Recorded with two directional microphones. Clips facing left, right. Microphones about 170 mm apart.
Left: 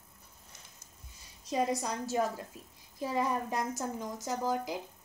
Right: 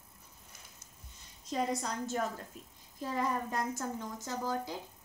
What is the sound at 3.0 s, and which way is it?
A woman's voice, 10° left (ahead or behind).